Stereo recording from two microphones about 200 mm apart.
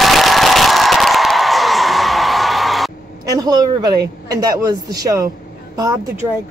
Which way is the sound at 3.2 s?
20° right (ahead or behind).